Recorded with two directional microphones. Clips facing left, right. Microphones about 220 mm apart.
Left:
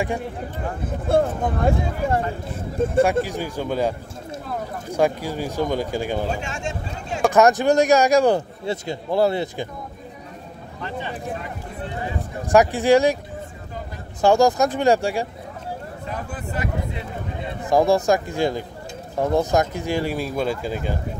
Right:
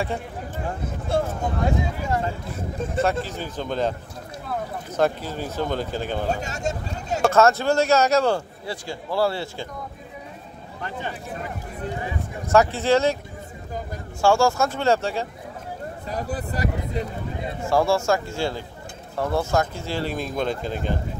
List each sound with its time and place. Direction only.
1.0 s speech: 55° left (ahead or behind)
3.3 s a man's voice: 10° left (ahead or behind)
4.9 s a man's voice: 10° left (ahead or behind)
6.4 s speech: 40° right (ahead or behind)
7.2 s a man's voice: 15° left (ahead or behind)
10.8 s speech: 45° right (ahead or behind)
12.4 s a man's voice: 15° left (ahead or behind)
14.2 s a man's voice: 20° left (ahead or behind)
16.1 s speech: 35° right (ahead or behind)
17.6 s a man's voice: 15° left (ahead or behind)